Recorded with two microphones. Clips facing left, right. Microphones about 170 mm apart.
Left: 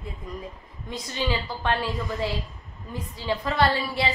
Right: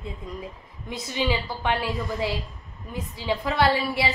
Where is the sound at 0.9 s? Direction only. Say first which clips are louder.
Right 2 dB; 10° right (ahead or behind).